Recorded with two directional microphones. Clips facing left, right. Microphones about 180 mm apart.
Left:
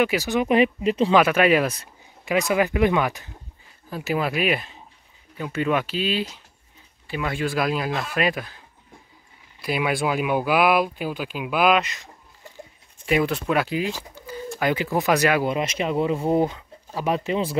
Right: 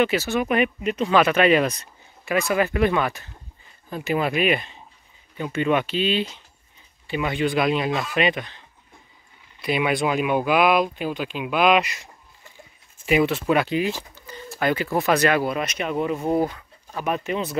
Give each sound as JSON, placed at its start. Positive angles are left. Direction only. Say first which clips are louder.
{"t": 0.0, "sound": "speech", "louder": "even", "side_deg": 10}
{"t": 1.1, "sound": "speech", "louder": "right 1 dB", "side_deg": 10}
{"t": 2.2, "sound": "speech", "louder": "left 1 dB", "side_deg": 15}
{"t": 3.9, "sound": "speech", "louder": "right 1 dB", "side_deg": 5}
{"t": 13.0, "sound": "speech", "louder": "right 2 dB", "side_deg": 0}
{"t": 14.1, "sound": "pigeon", "louder": "left 6 dB", "side_deg": 5}
{"t": 14.6, "sound": "speech", "louder": "right 1 dB", "side_deg": 15}
{"t": 15.5, "sound": "speech", "louder": "left 2 dB", "side_deg": 25}